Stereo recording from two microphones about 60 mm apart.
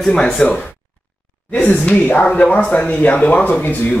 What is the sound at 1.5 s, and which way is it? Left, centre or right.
Speech, left.